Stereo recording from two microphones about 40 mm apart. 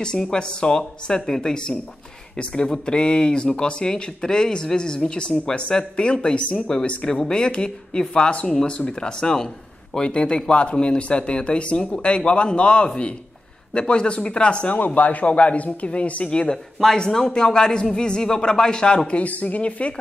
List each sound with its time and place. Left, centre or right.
0.3 s speech: left
15.0 s speech: left
16.8 s speech: centre; by 19.9 s left